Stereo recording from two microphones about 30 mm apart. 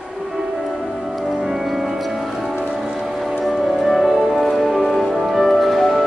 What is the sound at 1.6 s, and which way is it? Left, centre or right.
Music, centre.